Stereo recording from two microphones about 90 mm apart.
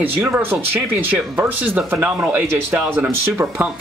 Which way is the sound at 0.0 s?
25° right (ahead or behind).